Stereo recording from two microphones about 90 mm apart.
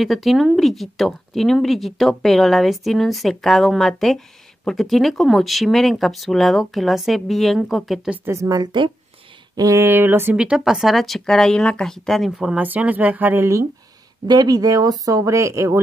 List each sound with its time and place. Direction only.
0.0 s speech: centre (ahead or behind)
8.3 s speech: 40° right (ahead or behind)
9.8 s speech: 25° right (ahead or behind)
10.3 s speech: 10° right (ahead or behind); by 12.3 s 5° left (ahead or behind)
12.3 s speech: 10° right (ahead or behind)
12.6 s speech: 20° right (ahead or behind)
14.2 s speech: 50° right (ahead or behind); by 15.8 s 35° right (ahead or behind)